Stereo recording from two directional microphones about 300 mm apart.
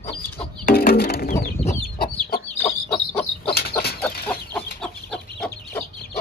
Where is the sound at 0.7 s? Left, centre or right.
Left.